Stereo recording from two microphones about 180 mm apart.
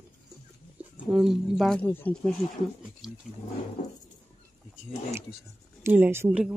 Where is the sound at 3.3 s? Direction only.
Centre (ahead or behind).